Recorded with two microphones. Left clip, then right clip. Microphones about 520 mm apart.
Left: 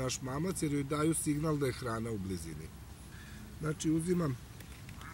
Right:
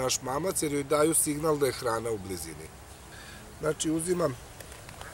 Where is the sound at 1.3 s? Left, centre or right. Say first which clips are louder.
Right 7 dB; right.